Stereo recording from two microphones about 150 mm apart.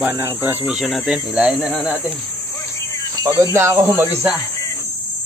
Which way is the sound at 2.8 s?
20° left (ahead or behind).